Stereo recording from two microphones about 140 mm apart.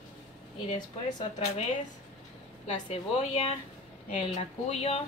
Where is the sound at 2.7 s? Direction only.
55° left (ahead or behind).